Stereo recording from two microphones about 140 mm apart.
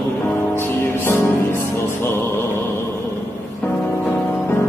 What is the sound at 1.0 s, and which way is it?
Music, 15° left (ahead or behind).